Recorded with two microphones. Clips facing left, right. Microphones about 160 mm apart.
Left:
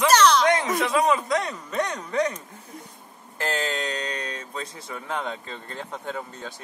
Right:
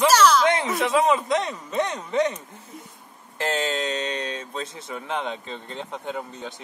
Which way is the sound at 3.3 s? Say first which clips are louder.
Right 2 dB; 25° right (ahead or behind).